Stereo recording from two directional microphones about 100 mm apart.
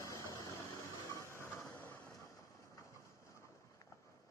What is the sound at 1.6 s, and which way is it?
Vehicle, 20° left (ahead or behind).